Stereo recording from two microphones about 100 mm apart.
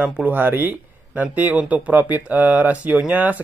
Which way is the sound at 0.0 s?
15° right (ahead or behind).